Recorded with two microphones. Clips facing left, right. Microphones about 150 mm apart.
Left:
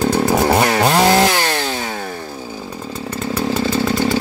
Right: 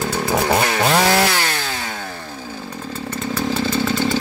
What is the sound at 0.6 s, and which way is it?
Chainsaw, 35° left (ahead or behind).